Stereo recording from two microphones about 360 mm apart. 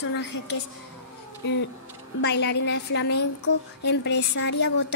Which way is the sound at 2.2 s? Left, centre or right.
Left.